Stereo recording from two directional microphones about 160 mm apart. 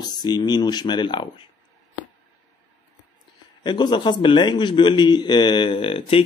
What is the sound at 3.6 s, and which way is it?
A man's voice, 30° left (ahead or behind).